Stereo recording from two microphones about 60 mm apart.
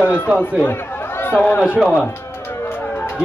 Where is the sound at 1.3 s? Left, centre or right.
Left.